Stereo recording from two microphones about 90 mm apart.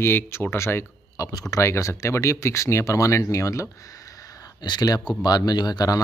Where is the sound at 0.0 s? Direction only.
25° left (ahead or behind).